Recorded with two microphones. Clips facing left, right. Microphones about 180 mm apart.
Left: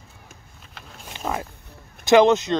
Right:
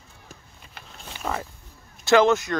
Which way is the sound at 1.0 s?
10° left (ahead or behind).